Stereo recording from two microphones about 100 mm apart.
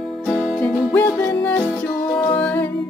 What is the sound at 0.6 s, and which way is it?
Music, 20° left (ahead or behind).